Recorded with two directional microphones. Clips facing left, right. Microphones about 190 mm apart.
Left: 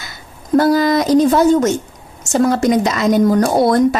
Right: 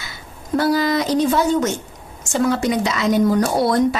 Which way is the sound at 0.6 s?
45° left (ahead or behind).